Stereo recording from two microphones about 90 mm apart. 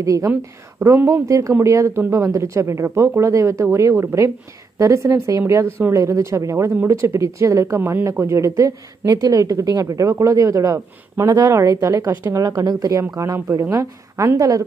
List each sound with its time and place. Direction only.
0.0 s a woman's voice: 40° right (ahead or behind)